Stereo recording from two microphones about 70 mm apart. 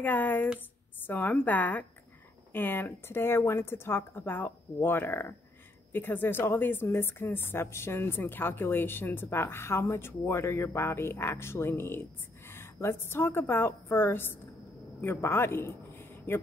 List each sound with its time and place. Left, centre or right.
0.0 s a woman's voice: left